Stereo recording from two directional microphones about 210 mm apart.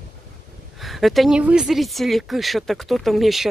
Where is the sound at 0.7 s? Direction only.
Centre (ahead or behind).